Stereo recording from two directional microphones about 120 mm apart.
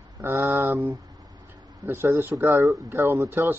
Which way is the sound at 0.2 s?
20° right (ahead or behind).